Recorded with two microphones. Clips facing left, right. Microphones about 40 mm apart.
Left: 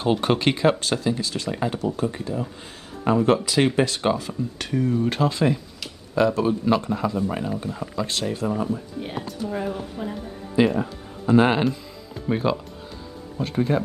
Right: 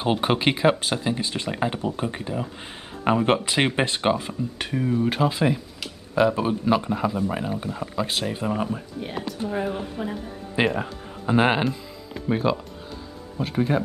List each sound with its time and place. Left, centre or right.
0.0 s speech: centre
4.3 s speech: centre
7.7 s speech: right
8.1 s speech: centre
8.5 s speech: right
9.5 s speech: centre
10.6 s speech: right
11.2 s speech: centre
12.3 s speech: centre